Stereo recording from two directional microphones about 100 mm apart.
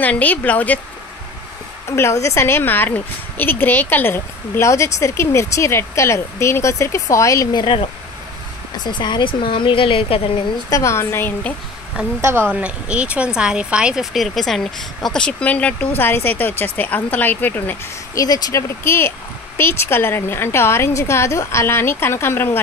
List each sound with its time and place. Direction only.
0.0 s speech: 15° left (ahead or behind)
1.9 s speech: 30° left (ahead or behind)
7.5 s a woman's voice: 55° left (ahead or behind)
8.7 s a woman's voice: 45° left (ahead or behind); by 10.4 s 65° left (ahead or behind)
10.7 s speech: 30° left (ahead or behind)
12.2 s a woman's voice: 25° right (ahead or behind)
12.4 s speech: 10° right (ahead or behind); by 17.7 s 20° left (ahead or behind)
18.1 s speech: 40° left (ahead or behind)
18.9 s speech: 25° left (ahead or behind)